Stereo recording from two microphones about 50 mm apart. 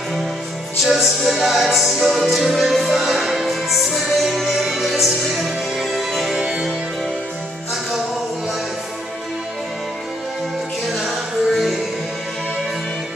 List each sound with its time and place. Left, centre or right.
0.8 s music: centre
6.3 s music: centre
10.9 s music: centre